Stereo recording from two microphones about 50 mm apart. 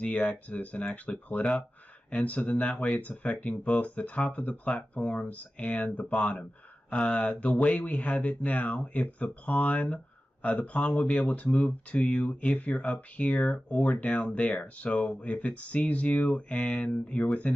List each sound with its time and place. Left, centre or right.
0.0 s speech: left